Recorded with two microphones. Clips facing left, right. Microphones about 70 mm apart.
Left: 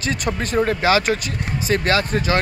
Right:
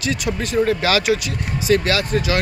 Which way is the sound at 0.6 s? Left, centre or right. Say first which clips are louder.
Even; left.